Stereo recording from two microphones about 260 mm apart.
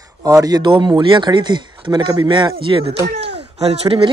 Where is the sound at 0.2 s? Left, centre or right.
Centre.